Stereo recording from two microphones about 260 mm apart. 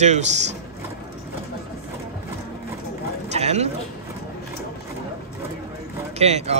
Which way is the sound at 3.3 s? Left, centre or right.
Right.